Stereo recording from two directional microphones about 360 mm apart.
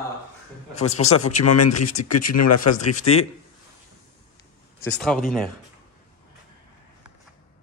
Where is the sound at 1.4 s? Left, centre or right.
Left.